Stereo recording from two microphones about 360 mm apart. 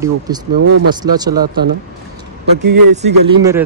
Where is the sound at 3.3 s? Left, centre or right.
Centre.